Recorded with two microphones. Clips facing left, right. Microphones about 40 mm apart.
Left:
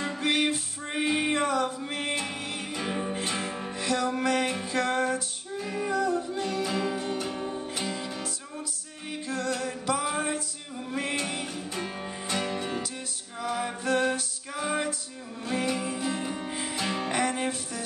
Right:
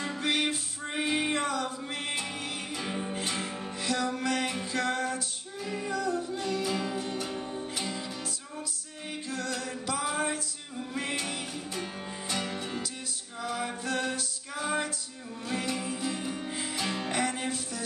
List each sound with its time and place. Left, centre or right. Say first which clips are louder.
0.0 s music: left 3 dB; centre
9.3 s music: left 5 dB; centre
13.9 s music: left 7 dB; left
14.5 s music: left 2 dB; centre